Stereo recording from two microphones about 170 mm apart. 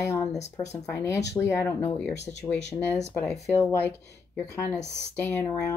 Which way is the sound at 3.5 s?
10° left (ahead or behind).